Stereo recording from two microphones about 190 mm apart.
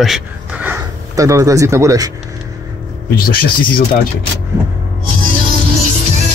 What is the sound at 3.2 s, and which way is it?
Speech, 50° left (ahead or behind).